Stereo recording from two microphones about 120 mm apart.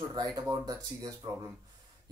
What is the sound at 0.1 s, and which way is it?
Speech, 30° right (ahead or behind).